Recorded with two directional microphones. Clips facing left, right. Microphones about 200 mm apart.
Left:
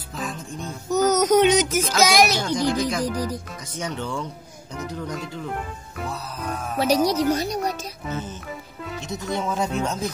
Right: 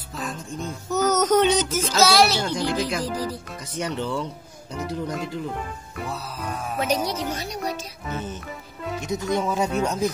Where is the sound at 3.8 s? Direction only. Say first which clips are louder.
Right 2 dB; 5° right (ahead or behind).